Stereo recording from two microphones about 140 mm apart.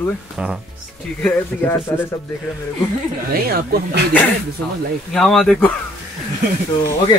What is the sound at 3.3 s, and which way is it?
Speech, 90° right.